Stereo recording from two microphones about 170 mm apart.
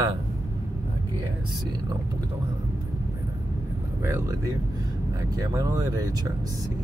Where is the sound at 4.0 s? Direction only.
15° right (ahead or behind).